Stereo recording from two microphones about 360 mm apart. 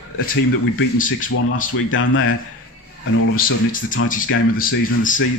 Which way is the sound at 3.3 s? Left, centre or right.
Left.